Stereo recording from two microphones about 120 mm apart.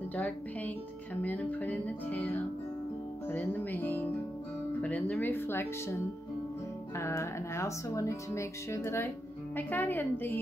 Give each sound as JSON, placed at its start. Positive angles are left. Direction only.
{"t": 0.1, "sound": "music", "side_deg": 15}
{"t": 7.0, "sound": "speech", "side_deg": 25}
{"t": 9.6, "sound": "music", "side_deg": 15}